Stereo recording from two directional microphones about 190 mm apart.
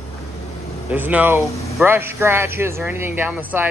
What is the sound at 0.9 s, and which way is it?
Speech, 10° right (ahead or behind).